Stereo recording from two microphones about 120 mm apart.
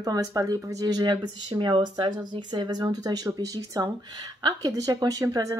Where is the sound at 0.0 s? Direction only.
30° right (ahead or behind).